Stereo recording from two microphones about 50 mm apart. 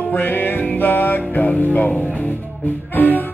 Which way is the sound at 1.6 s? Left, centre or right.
Left.